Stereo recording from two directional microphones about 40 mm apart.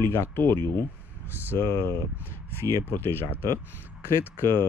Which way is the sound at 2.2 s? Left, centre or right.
Left.